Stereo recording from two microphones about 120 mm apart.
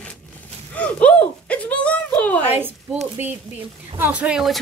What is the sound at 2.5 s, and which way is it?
Speech, 15° right (ahead or behind).